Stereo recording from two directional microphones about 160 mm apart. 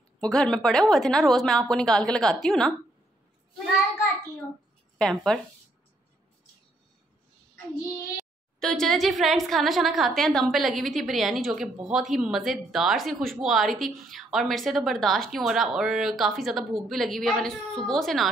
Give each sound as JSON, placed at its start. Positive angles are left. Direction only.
{"t": 0.2, "sound": "a woman's voice", "side_deg": 5}
{"t": 4.9, "sound": "speech", "side_deg": 5}
{"t": 7.7, "sound": "a woman's voice", "side_deg": 0}